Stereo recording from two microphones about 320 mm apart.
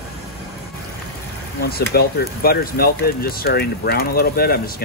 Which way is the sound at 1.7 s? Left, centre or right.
Left.